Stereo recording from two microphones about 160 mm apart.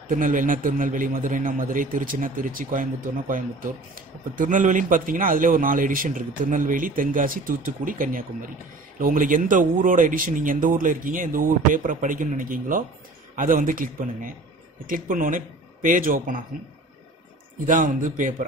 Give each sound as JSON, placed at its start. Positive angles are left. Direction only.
{"t": 0.1, "sound": "a man's voice", "side_deg": -55}
{"t": 17.6, "sound": "a man's voice", "side_deg": -55}